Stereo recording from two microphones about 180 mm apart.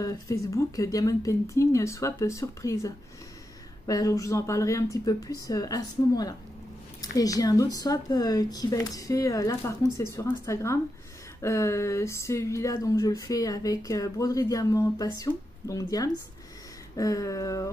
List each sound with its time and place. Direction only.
0.0 s speech: 15° left (ahead or behind)